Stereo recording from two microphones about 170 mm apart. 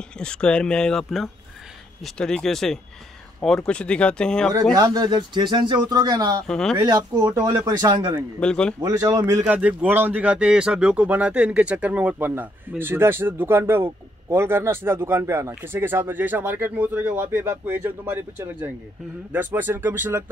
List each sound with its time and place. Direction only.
0.2 s speech: 5° left (ahead or behind)
4.7 s speech: 20° right (ahead or behind)
6.4 s speech: 5° left (ahead or behind)
6.8 s speech: 25° right (ahead or behind)
8.4 s speech: 5° left (ahead or behind)
8.8 s speech: 20° right (ahead or behind)
9.2 s a man's voice: 10° right (ahead or behind)